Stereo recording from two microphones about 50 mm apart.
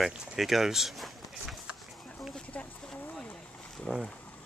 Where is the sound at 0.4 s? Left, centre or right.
Centre.